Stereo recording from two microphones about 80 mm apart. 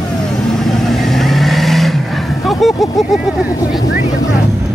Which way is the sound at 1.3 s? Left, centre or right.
Centre.